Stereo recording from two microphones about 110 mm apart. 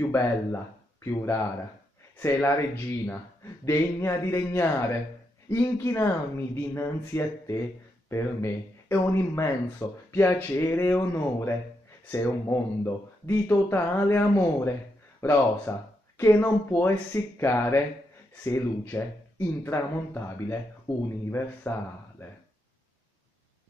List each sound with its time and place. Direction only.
0.1 s speech: 25° left (ahead or behind)
3.6 s speech: 25° left (ahead or behind)